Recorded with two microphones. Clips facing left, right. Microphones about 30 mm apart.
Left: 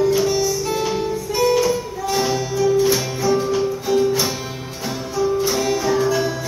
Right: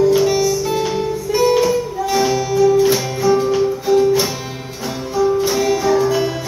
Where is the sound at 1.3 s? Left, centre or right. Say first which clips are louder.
Right 3 dB; centre.